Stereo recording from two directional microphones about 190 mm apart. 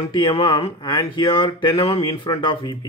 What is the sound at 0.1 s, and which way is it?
Speech, 25° left (ahead or behind).